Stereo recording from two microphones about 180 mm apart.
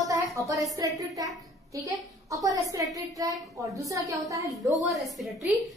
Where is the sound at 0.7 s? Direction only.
20° right (ahead or behind).